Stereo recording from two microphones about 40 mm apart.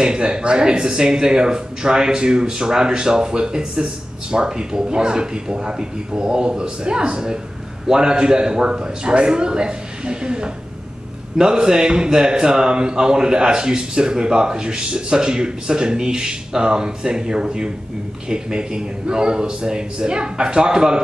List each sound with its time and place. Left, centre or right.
0.0 s speech: right